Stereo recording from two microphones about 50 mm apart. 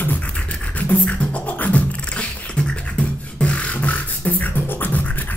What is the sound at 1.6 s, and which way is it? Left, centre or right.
Beatboxing, left.